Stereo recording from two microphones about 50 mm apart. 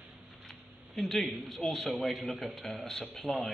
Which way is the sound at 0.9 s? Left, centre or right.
Centre.